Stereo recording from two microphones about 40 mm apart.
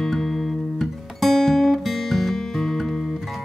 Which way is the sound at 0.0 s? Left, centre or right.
Centre.